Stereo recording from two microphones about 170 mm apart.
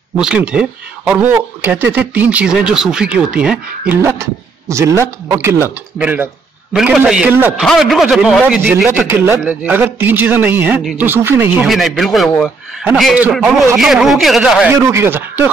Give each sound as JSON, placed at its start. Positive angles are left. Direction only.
{"t": 0.2, "sound": "speech", "side_deg": -5}
{"t": 4.0, "sound": "a man's voice", "side_deg": -15}
{"t": 11.6, "sound": "a man's voice", "side_deg": 0}
{"t": 14.7, "sound": "speech", "side_deg": -15}